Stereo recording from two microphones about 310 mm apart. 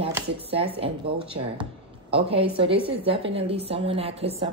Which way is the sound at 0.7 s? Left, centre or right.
Centre.